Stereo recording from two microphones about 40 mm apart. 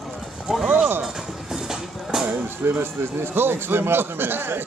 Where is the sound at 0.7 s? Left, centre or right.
Right.